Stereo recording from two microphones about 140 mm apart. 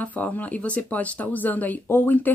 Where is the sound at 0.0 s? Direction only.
10° left (ahead or behind).